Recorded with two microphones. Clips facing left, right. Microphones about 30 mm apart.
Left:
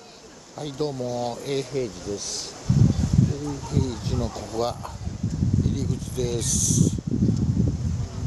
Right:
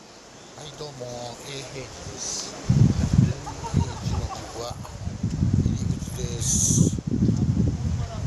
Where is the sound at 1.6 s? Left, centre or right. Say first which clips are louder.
Left 8 dB; centre.